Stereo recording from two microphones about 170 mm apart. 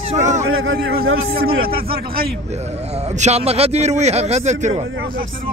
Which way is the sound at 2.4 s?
40° right (ahead or behind).